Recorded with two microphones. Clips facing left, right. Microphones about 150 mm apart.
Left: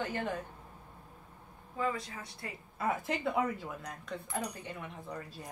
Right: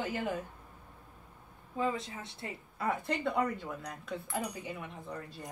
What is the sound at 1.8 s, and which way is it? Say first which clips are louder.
Speech: right 1 dB; 20° right (ahead or behind).